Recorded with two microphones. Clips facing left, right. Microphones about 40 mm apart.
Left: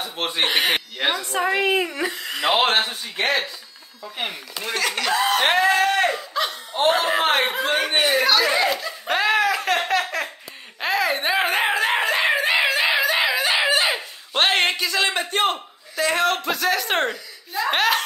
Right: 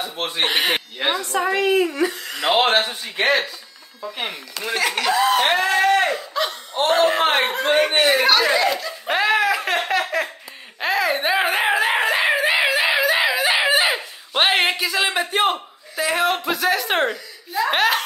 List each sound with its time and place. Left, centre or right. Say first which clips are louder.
0.4 s a man's voice: even; centre
1.3 s speech: right 2 dB; centre
2.4 s a man's voice: right 2 dB; centre
4.2 s a man's voice: even; centre
4.7 s speech: right 3 dB; centre
5.8 s a sound: right 2 dB; centre
6.9 s a man's voice: right 2 dB; centre
8.1 s speech: right 2 dB; right
8.6 s snicker: right 2 dB; centre
9.0 s laughter: right 1 dB; centre
10.8 s a sound: right 1 dB; centre